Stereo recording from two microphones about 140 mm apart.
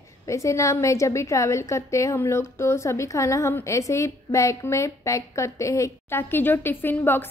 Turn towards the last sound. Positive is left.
turn(degrees=15)  # may be behind; listen again after turning